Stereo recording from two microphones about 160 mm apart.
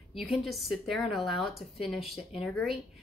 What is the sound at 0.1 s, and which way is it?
A woman's voice, centre (ahead or behind).